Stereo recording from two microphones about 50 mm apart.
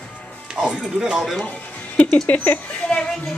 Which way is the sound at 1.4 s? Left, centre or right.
Left.